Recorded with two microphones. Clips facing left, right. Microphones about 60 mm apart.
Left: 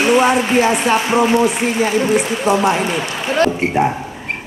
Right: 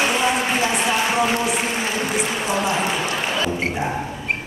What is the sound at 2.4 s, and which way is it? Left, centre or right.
Speech, left.